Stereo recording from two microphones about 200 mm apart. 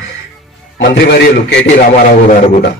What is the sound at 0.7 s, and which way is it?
Speech, 55° left (ahead or behind).